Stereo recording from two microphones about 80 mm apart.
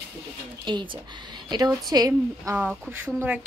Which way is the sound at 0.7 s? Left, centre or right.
Right.